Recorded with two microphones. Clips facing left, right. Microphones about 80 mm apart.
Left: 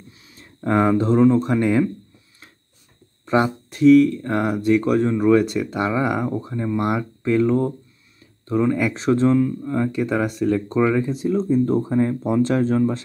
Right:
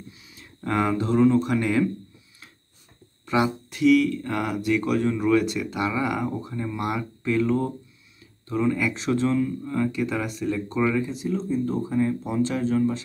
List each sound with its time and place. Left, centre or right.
0.1 s a sound: left
0.6 s speech: left
3.3 s speech: left